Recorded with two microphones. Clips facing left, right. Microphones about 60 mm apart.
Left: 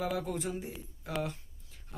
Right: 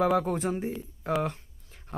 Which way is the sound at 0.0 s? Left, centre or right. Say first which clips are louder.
Right 9 dB; right.